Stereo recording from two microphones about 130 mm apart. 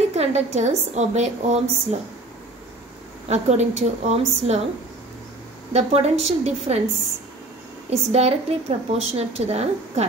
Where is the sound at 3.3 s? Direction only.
60° right (ahead or behind).